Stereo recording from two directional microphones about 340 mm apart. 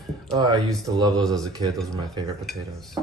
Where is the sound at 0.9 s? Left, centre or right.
Centre.